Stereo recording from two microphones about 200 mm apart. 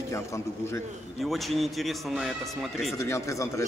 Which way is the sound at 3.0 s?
15° left (ahead or behind).